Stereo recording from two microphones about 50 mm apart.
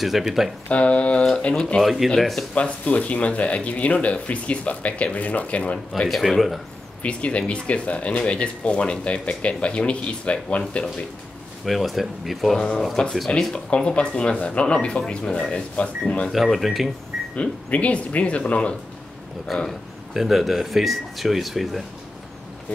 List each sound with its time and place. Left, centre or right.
0.0 s speech: centre
0.7 s speech: left
1.8 s speech: centre
2.5 s speech: left
6.0 s speech: centre
7.0 s speech: left
11.6 s speech: centre
12.5 s speech: left
16.3 s speech: centre
17.4 s speech: left
19.4 s speech: centre
20.2 s speech: centre